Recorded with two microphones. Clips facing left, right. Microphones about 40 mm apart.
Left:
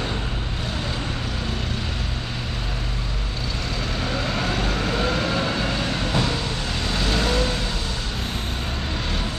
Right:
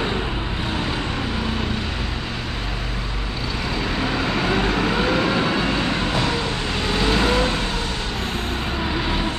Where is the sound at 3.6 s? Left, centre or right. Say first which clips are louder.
Right 5 dB; centre.